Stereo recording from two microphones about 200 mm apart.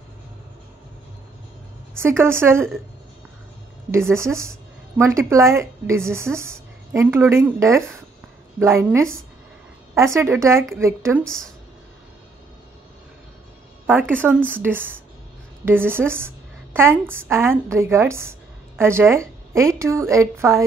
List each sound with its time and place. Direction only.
2.0 s a woman's voice: 10° right (ahead or behind)
3.9 s a woman's voice: 15° right (ahead or behind)
13.8 s a woman's voice: 10° right (ahead or behind)